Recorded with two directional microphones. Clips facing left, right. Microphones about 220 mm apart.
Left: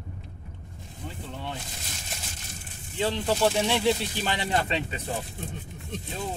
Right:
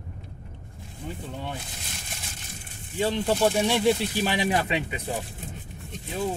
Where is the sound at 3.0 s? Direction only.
10° right (ahead or behind).